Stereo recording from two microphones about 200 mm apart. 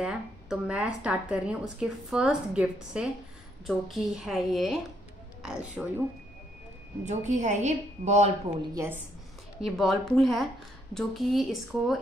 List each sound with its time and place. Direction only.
0.0 s speech: 5° right (ahead or behind)
7.1 s a woman's voice: 35° right (ahead or behind)
8.7 s a woman's voice: 10° right (ahead or behind)
9.6 s speech: centre (ahead or behind)